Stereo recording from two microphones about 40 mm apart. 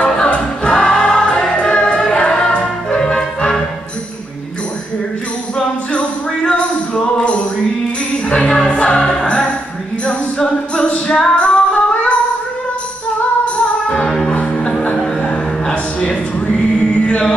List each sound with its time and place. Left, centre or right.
0.0 s music: left
1.5 s choir: left
2.0 s music: centre
5.9 s music: left
11.1 s female singing: left
13.8 s music: left
16.4 s music: left